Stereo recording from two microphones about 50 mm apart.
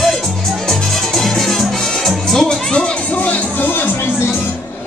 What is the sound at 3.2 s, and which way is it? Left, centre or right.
Music, left.